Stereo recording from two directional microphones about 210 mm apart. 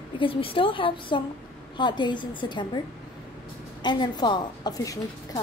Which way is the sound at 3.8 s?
20° left (ahead or behind).